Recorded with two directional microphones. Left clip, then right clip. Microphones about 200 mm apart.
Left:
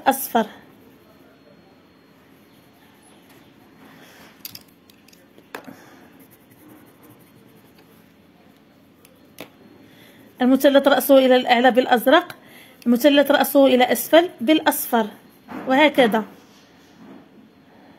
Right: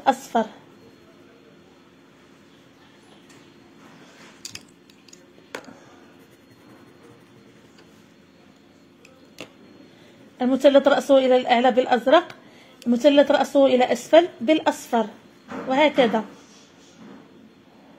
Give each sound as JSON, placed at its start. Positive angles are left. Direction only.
{"t": 0.0, "sound": "a woman's voice", "side_deg": 25}
{"t": 10.3, "sound": "a woman's voice", "side_deg": 25}